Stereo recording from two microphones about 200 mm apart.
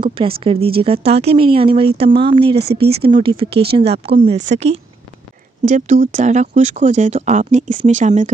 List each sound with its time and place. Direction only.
0.4 s speech: 25° right (ahead or behind)